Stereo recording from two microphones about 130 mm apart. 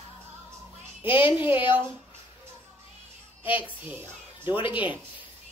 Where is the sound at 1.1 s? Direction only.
15° right (ahead or behind).